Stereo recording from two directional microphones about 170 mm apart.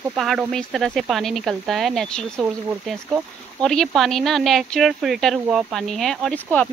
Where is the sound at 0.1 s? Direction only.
5° right (ahead or behind).